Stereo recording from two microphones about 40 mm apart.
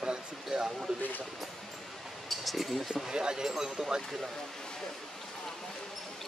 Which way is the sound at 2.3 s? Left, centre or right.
Centre.